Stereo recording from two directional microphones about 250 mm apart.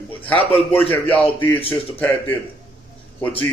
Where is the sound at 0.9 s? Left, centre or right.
Centre.